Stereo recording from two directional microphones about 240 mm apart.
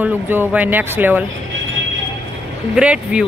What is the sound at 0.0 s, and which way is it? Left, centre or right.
Speech, centre.